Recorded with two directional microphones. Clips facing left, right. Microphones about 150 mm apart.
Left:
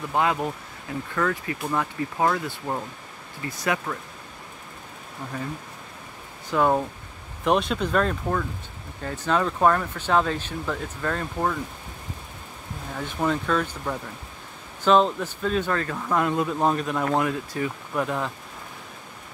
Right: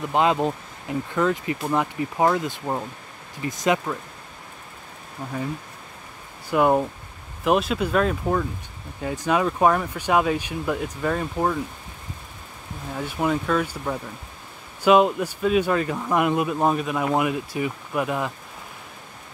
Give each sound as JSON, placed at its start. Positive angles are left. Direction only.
{"t": 0.1, "sound": "speech", "side_deg": -20}
{"t": 6.5, "sound": "speech", "side_deg": -15}
{"t": 12.9, "sound": "speech", "side_deg": -10}